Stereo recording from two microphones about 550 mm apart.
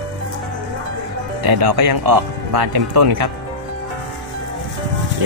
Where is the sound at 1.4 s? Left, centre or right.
Right.